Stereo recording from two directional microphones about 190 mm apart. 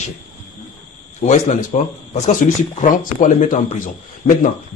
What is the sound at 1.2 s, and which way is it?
A man's voice, 40° left (ahead or behind).